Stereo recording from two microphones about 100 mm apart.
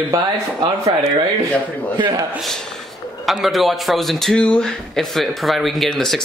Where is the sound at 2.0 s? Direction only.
40° right (ahead or behind).